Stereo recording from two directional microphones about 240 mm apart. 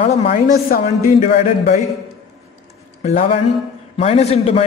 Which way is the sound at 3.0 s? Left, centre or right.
Left.